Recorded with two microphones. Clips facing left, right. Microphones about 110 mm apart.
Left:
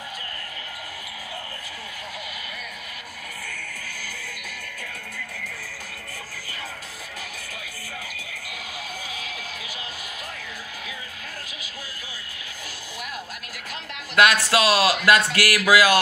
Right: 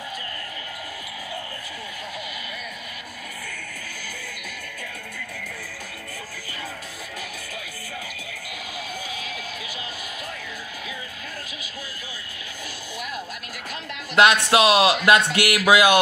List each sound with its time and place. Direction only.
14.1 s speech: 25° right (ahead or behind)